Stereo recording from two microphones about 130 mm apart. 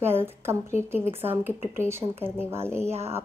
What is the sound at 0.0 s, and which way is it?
A woman's voice, 20° right (ahead or behind).